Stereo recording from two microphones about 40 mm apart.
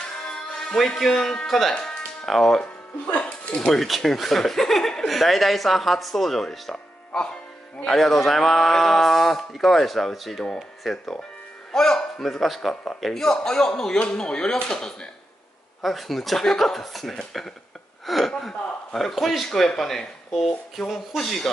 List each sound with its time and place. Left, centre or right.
0.3 s music: left
0.7 s a man's voice: centre
2.6 s speech: left
3.8 s a man's voice: centre
15.8 s a man's voice: centre